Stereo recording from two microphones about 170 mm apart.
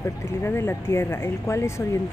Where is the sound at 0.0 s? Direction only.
15° left (ahead or behind).